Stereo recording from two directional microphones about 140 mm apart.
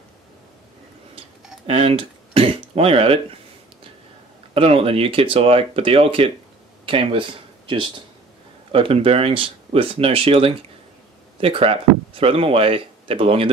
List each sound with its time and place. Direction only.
1.7 s speech: 45° right (ahead or behind)
4.6 s speech: 45° right (ahead or behind)